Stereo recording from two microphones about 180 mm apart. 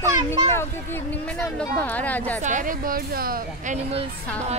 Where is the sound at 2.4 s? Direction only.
45° right (ahead or behind).